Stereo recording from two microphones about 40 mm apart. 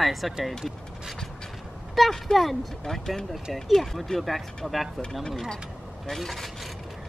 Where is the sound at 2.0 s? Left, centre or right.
Centre.